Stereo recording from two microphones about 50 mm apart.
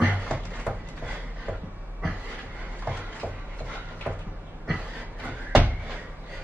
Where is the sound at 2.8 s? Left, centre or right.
Right.